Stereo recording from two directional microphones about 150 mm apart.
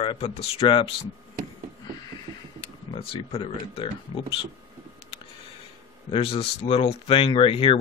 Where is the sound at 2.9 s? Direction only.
35° left (ahead or behind).